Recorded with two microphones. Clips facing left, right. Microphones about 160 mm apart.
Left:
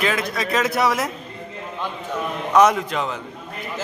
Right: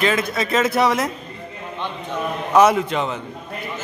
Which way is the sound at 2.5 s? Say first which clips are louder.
Right 1 dB; 5° right (ahead or behind).